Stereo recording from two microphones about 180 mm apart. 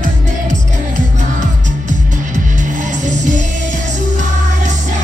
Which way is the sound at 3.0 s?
45° right (ahead or behind).